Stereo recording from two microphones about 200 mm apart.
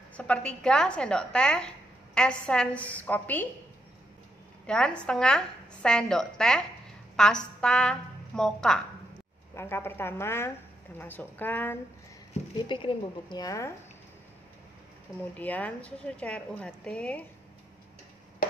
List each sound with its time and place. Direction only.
0.2 s a woman's voice: 5° left (ahead or behind)
4.6 s a woman's voice: 5° left (ahead or behind)
12.6 s a woman's voice: 25° left (ahead or behind)
15.3 s a woman's voice: 10° left (ahead or behind)